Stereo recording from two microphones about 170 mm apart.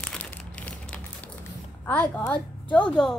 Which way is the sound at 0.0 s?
5° left (ahead or behind).